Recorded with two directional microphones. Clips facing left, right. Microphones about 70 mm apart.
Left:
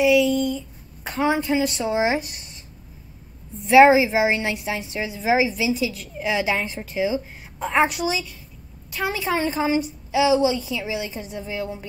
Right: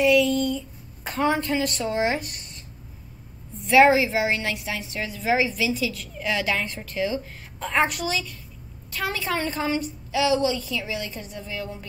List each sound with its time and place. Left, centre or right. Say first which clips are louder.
0.0 s a woman's voice: left 2 dB; centre
3.6 s a woman's voice: left 4 dB; centre
5.7 s a woman's voice: left 3 dB; centre